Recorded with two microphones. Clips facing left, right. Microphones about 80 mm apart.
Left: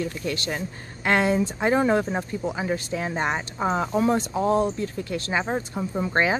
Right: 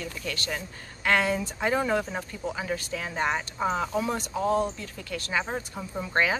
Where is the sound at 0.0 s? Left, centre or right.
Left.